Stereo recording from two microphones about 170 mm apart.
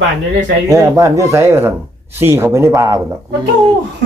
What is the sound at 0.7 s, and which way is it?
Speech, 15° right (ahead or behind).